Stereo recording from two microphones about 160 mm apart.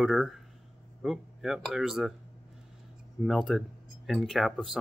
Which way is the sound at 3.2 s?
Centre (ahead or behind).